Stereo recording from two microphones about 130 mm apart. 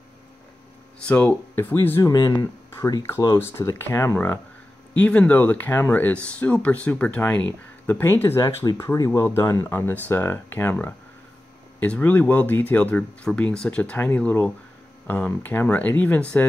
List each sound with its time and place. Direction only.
1.0 s speech: 10° left (ahead or behind)
2.1 s speech: 30° left (ahead or behind); by 16.4 s 10° left (ahead or behind)